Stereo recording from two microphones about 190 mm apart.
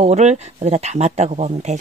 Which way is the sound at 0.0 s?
35° right (ahead or behind).